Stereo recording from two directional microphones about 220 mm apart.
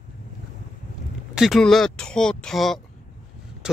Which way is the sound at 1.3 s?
Centre (ahead or behind).